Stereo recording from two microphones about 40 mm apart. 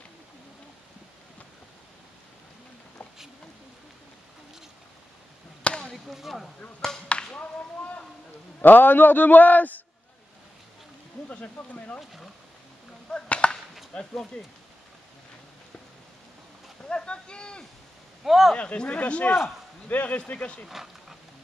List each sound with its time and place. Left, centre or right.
5.7 s chop: left
6.0 s speech: centre
7.1 s speech: left
8.5 s a man's voice: left
11.2 s speech: left
13.1 s chop: left
16.9 s speech: left
18.2 s speech: centre
18.5 s speech: left
20.3 s speech: left
20.6 s speech: centre